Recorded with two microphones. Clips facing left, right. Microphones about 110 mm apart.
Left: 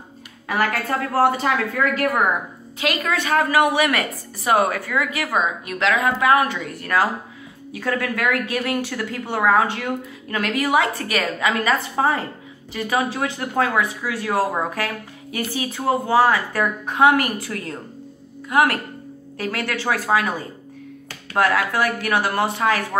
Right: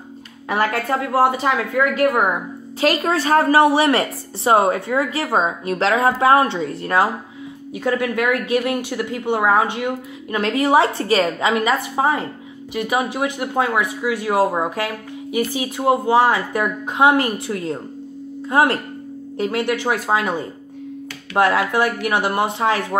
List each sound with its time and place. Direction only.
0.5 s speech: 25° right (ahead or behind)
2.8 s a woman's voice: 35° right (ahead or behind)